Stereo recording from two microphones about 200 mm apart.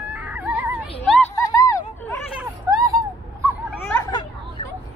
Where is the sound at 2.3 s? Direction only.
15° right (ahead or behind).